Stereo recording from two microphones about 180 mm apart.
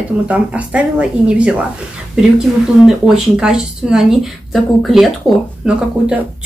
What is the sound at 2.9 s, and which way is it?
Speech, 5° right (ahead or behind).